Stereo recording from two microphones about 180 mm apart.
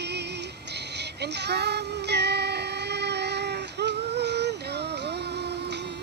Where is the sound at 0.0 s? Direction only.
70° right (ahead or behind).